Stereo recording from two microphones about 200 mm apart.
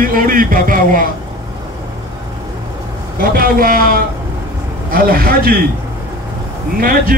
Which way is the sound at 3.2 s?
45° right (ahead or behind).